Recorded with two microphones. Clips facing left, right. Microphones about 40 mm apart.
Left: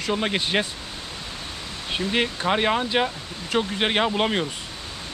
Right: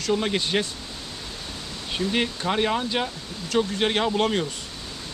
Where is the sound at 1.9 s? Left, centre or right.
Left.